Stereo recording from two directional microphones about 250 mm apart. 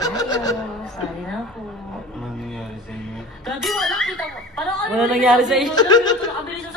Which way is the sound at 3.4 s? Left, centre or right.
Centre.